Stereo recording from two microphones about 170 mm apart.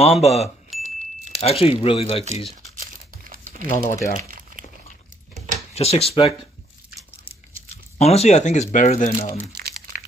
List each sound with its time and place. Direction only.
0.0 s speech: 40° left (ahead or behind)
0.7 s chime: centre (ahead or behind)
1.4 s speech: 35° left (ahead or behind)
2.8 s crumpling: 55° right (ahead or behind)
3.8 s speech: 20° left (ahead or behind)
4.3 s crumpling: 50° right (ahead or behind)
5.8 s speech: 35° left (ahead or behind)
7.7 s speech: 40° left (ahead or behind)